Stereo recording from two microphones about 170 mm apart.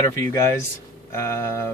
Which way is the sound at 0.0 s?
15° left (ahead or behind).